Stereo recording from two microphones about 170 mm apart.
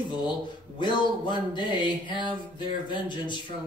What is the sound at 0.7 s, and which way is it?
Speech, 25° left (ahead or behind).